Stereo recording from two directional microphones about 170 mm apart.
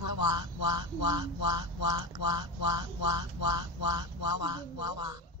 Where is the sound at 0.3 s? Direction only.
25° right (ahead or behind).